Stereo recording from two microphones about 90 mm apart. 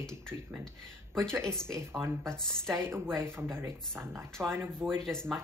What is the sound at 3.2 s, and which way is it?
Speech, 25° right (ahead or behind).